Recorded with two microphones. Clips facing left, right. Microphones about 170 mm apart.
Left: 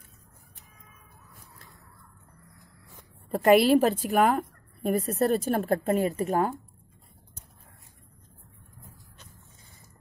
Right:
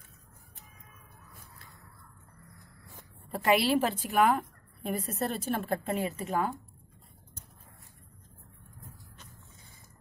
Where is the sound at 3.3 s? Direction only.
45° left (ahead or behind).